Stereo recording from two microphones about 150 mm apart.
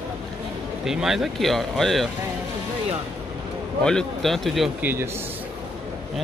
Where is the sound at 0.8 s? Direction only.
5° right (ahead or behind).